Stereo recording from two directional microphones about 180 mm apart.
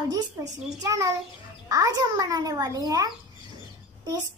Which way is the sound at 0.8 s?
20° right (ahead or behind).